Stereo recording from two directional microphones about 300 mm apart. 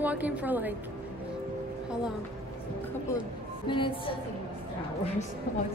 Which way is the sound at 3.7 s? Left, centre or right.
Centre.